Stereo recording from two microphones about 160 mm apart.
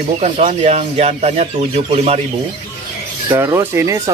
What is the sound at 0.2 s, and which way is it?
Speech, 45° right (ahead or behind).